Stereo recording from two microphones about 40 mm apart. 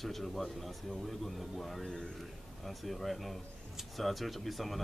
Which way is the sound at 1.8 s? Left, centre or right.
Centre.